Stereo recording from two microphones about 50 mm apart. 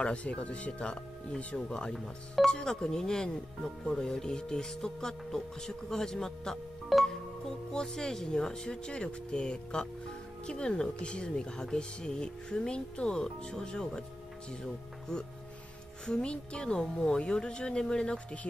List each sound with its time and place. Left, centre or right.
0.0 s speech: left
6.9 s music: centre
7.7 s speech: centre
16.1 s speech: centre